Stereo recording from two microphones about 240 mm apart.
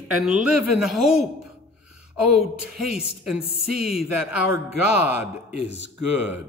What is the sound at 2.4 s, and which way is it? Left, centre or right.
A man's voice, centre.